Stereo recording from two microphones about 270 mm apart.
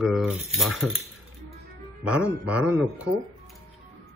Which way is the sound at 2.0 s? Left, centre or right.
Centre.